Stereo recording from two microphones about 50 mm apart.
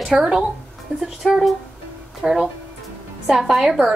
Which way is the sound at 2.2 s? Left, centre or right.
Centre.